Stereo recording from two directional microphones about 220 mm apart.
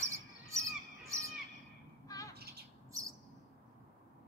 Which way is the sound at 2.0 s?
15° left (ahead or behind).